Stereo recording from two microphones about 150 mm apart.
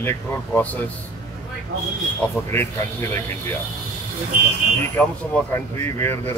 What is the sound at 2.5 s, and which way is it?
Speech, 15° left (ahead or behind).